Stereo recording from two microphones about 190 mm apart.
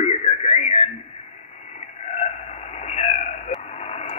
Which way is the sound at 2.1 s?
35° left (ahead or behind).